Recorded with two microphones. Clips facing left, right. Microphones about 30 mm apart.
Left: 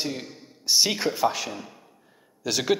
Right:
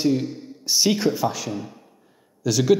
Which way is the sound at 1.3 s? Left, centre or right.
Left.